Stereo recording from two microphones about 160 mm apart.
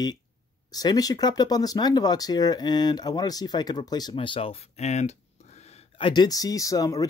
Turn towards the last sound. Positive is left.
turn(degrees=20)  # may be behind; listen again after turning